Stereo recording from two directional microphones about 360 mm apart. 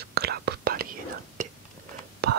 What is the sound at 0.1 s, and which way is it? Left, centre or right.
Whispering, right.